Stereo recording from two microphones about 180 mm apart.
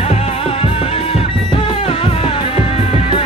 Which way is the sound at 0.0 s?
35° left (ahead or behind).